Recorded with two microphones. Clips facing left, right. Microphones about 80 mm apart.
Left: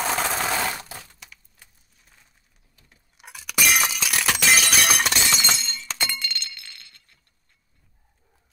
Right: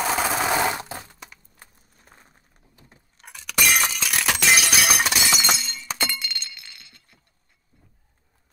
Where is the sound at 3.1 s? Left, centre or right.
Centre.